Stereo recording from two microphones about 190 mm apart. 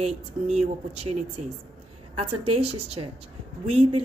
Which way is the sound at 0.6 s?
30° right (ahead or behind).